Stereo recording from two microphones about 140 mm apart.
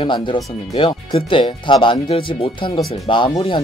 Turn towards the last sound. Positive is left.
turn(degrees=30)  # may be behind; listen again after turning